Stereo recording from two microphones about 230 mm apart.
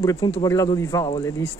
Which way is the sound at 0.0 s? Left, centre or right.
Centre.